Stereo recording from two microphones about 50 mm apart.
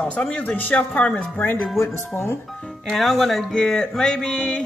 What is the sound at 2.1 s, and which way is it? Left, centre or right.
Speech, left.